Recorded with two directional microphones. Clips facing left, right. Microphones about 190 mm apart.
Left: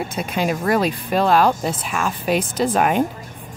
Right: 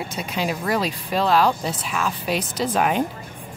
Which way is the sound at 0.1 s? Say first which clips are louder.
Left 3 dB; 50° left (ahead or behind).